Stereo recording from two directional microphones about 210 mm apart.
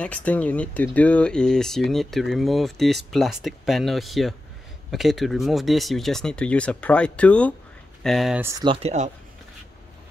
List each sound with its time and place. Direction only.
0.0 s speech: 5° left (ahead or behind); by 8.6 s 10° right (ahead or behind)
8.6 s speech: 30° right (ahead or behind)